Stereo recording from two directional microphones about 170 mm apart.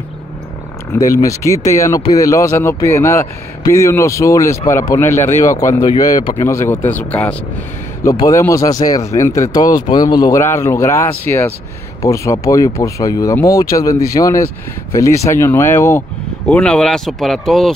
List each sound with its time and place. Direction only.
1.1 s speech: 20° left (ahead or behind); by 17.7 s centre (ahead or behind)